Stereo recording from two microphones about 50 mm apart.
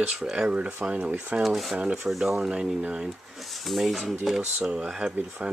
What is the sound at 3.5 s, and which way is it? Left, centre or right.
Dishes, centre.